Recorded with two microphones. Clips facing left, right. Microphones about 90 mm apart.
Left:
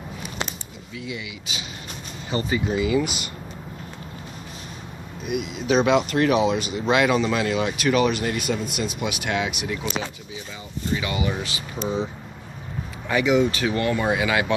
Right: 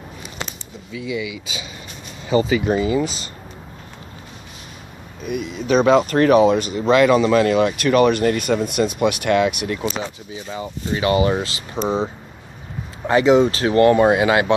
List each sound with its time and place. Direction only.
2.8 s speech: 35° right (ahead or behind)
5.3 s speech: 45° right (ahead or behind)
11.7 s speech: 35° right (ahead or behind)